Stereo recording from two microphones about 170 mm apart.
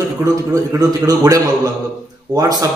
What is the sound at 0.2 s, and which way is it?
A man's voice, 20° right (ahead or behind).